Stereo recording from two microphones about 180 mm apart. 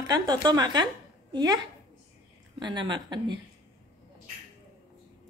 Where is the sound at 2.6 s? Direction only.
25° right (ahead or behind).